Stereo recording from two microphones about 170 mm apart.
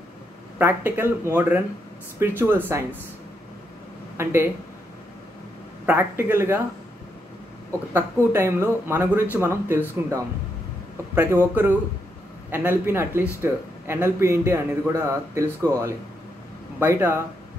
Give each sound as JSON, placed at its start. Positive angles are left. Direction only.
{"t": 0.6, "sound": "speech", "side_deg": -10}
{"t": 4.2, "sound": "speech", "side_deg": -15}
{"t": 5.9, "sound": "speech", "side_deg": -15}
{"t": 7.9, "sound": "speech", "side_deg": -15}
{"t": 16.8, "sound": "speech", "side_deg": -15}